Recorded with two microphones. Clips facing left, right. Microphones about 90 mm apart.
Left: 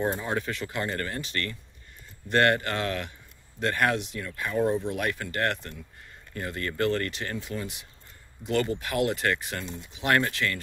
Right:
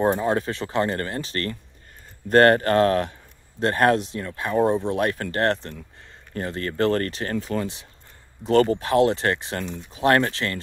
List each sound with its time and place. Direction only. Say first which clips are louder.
0.0 s a man's voice: right 7 dB; 35° right (ahead or behind)